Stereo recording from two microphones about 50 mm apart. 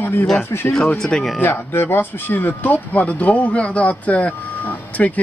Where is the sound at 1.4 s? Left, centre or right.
Left.